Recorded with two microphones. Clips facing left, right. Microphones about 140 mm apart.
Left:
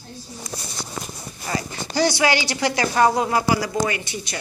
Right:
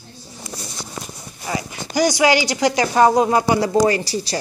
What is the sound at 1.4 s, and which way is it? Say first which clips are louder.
Speech: right 1 dB; 15° right (ahead or behind).